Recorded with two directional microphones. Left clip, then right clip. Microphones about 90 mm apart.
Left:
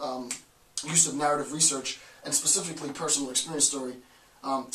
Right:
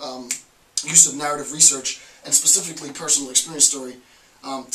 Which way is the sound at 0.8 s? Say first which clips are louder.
Right 6 dB; centre (ahead or behind).